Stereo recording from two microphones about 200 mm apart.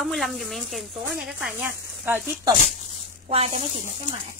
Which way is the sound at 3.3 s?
35° right (ahead or behind).